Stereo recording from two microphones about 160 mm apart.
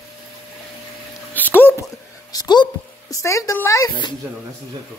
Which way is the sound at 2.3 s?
25° left (ahead or behind).